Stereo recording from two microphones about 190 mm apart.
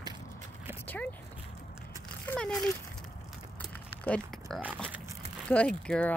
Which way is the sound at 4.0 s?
5° left (ahead or behind).